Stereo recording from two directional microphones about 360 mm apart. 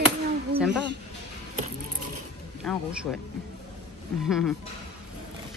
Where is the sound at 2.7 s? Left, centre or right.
Centre.